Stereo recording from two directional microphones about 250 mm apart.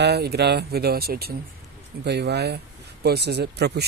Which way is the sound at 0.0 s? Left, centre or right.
Right.